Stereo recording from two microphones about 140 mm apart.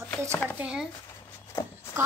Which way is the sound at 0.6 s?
5° right (ahead or behind).